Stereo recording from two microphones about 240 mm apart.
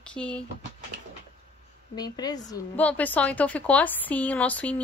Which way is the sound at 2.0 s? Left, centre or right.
Centre.